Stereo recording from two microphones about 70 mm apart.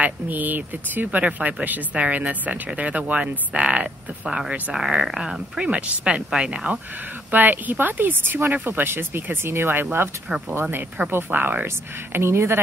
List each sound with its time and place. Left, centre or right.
0.0 s speech: right
7.2 s speech: right
11.6 s speech: right